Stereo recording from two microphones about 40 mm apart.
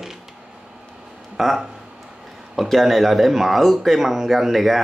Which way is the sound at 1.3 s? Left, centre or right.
Centre.